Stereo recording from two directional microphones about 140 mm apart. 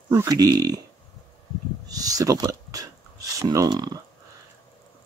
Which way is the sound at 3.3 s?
25° right (ahead or behind).